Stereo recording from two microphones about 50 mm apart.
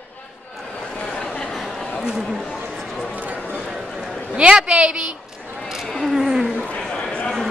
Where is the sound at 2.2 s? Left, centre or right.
Centre.